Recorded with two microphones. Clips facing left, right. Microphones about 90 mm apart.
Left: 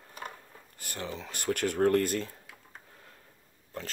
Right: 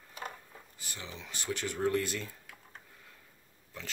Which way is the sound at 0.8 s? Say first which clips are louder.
Left 8 dB; 55° left (ahead or behind).